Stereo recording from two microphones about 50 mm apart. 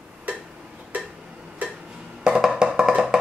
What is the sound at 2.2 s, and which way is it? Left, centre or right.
Wood block, centre.